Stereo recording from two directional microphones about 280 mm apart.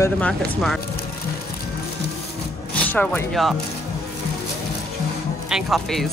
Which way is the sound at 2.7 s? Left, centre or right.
Centre.